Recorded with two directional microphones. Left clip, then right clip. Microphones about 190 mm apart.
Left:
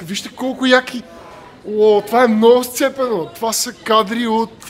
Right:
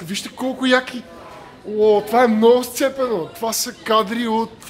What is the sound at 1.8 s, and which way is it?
Speech, 10° left (ahead or behind).